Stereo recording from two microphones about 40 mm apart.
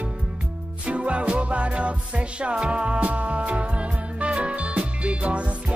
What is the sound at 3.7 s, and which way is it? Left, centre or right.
Music, right.